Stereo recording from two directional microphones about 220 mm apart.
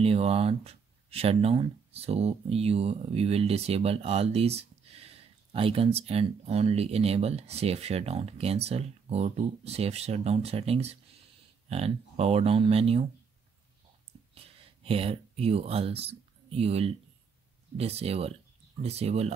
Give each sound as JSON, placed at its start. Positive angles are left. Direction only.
{"t": 0.0, "sound": "speech", "side_deg": -25}
{"t": 14.3, "sound": "speech", "side_deg": -25}